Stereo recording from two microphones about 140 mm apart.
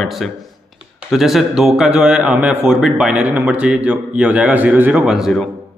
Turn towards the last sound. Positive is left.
turn(degrees=-5)  # may be behind; listen again after turning